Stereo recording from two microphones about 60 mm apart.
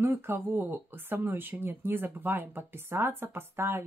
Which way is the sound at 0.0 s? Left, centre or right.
Right.